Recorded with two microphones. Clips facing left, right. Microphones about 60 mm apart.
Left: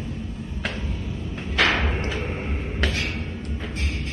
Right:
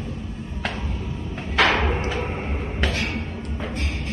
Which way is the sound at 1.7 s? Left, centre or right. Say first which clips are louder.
Right 3 dB; centre.